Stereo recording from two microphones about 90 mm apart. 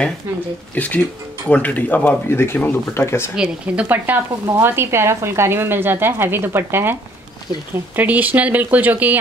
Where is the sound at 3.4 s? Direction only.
15° right (ahead or behind).